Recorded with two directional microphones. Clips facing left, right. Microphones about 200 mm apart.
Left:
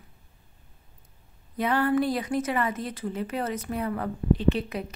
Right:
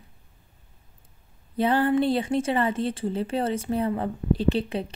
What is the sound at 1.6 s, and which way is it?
A woman's voice, 30° right (ahead or behind).